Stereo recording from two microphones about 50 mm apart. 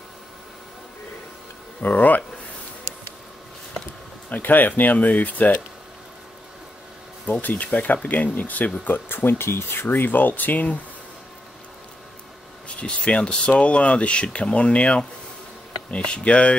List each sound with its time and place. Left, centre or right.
1.8 s speech: left
4.3 s speech: left
7.4 s speech: left
12.6 s speech: left